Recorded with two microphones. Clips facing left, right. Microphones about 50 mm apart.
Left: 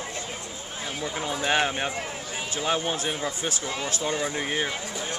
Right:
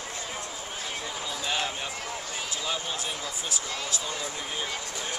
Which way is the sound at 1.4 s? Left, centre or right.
Left.